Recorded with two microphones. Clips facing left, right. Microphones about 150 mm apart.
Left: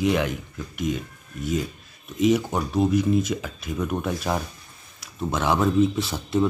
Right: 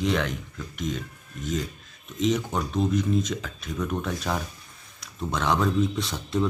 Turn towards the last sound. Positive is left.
turn(degrees=5)  # may be behind; listen again after turning